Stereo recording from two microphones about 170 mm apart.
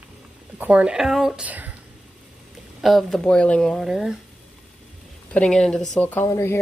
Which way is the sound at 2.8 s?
Centre (ahead or behind).